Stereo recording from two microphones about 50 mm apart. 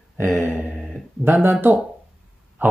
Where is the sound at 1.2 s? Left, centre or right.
Right.